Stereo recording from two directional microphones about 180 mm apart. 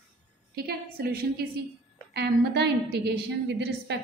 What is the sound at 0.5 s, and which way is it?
A woman's voice, 60° right (ahead or behind).